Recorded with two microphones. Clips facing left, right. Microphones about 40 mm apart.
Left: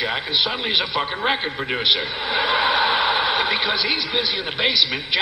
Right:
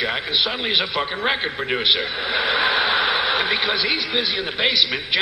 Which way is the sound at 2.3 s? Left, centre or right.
Left.